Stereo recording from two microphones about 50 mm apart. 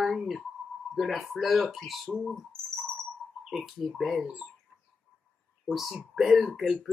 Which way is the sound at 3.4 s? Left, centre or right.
Centre.